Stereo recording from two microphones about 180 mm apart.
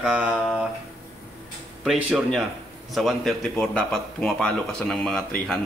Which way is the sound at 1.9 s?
Centre (ahead or behind).